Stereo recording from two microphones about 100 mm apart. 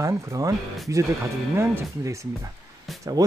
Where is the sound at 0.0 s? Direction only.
35° right (ahead or behind).